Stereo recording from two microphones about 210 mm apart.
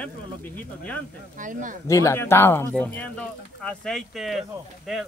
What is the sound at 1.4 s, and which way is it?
Speech, 40° right (ahead or behind).